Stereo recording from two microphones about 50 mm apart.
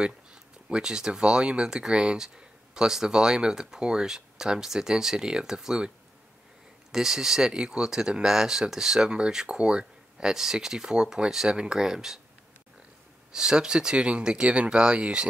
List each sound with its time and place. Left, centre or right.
0.0 s speech: centre
6.9 s speech: centre
13.3 s speech: centre